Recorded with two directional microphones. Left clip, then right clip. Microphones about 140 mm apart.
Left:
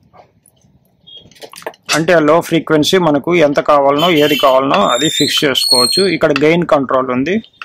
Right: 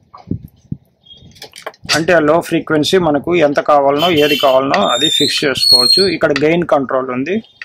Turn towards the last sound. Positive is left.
turn(degrees=20)  # may be behind; listen again after turning